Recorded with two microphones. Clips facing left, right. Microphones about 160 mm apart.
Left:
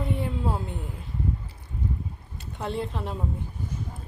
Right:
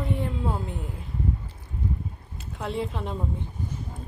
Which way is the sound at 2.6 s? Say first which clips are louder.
Even; centre (ahead or behind).